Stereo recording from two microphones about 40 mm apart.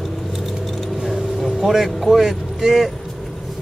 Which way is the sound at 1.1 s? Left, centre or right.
Centre.